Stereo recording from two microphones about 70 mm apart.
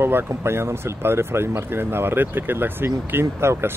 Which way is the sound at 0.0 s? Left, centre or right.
Right.